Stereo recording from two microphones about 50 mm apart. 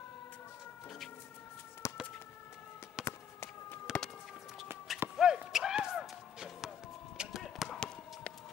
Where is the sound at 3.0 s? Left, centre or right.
Centre.